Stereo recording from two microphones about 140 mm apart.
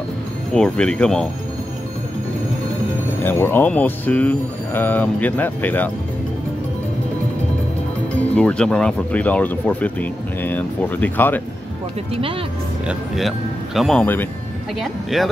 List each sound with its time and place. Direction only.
0.5 s speech: 5° left (ahead or behind)
3.3 s speech: 15° left (ahead or behind)
8.3 s speech: 10° left (ahead or behind)
12.1 s speech: 40° right (ahead or behind)
12.8 s speech: centre (ahead or behind)